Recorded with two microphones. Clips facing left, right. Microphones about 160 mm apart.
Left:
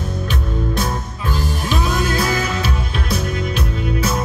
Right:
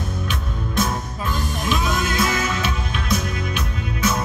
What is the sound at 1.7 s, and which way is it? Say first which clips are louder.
Music: left 2 dB; 35° left (ahead or behind).